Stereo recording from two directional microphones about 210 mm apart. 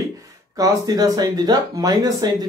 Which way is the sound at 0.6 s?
15° right (ahead or behind).